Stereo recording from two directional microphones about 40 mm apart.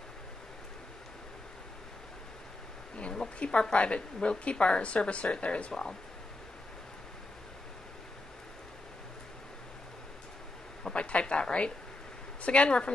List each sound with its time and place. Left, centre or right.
3.0 s a woman's voice: left
5.7 s speech: centre
10.8 s a sound: left
12.4 s a woman's voice: left